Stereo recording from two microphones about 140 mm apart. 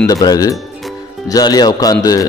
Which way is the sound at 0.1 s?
25° left (ahead or behind).